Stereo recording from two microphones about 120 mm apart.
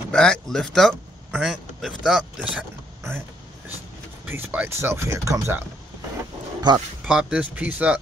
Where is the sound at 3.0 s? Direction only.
20° right (ahead or behind).